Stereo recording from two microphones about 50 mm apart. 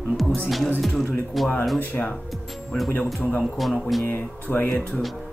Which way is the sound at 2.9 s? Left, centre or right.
Left.